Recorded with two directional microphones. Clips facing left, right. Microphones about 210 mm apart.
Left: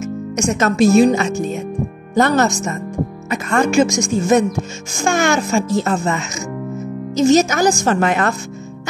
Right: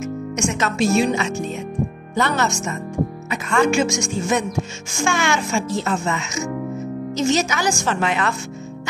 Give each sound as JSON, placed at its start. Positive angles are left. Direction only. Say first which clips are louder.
{"t": 0.4, "sound": "a child's voice", "louder": "left 6 dB", "side_deg": 40}